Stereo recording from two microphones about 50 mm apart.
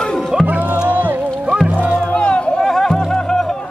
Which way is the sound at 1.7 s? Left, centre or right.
Right.